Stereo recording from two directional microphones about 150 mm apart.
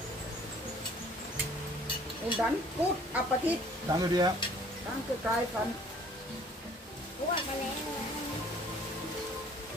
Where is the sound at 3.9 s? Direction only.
25° right (ahead or behind).